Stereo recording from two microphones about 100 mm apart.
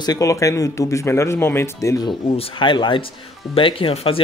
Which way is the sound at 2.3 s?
65° left (ahead or behind).